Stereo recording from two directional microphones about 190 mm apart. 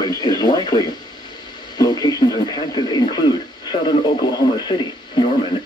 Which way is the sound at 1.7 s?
20° left (ahead or behind).